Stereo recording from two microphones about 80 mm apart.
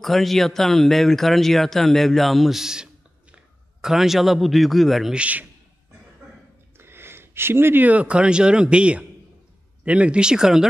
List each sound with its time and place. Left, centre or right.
0.0 s speech: centre
5.1 s speech: centre
6.8 s speech: right; by 10.7 s centre